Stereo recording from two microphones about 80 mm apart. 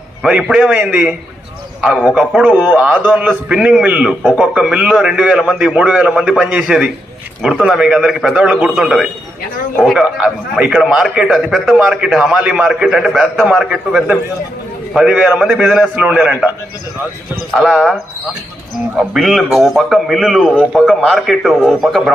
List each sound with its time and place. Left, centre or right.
0.2 s a man's voice: centre
2.3 s a man's voice: centre
17.6 s a man's voice: centre
18.9 s a man's voice: centre
20.5 s a man's voice: centre
20.9 s a man's voice: centre